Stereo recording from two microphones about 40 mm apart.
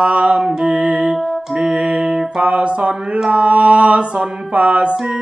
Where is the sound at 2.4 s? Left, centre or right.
Right.